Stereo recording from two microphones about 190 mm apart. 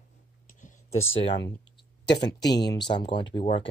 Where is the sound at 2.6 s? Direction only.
20° left (ahead or behind).